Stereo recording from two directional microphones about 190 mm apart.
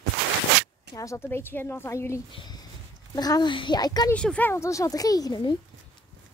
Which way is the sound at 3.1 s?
20° left (ahead or behind).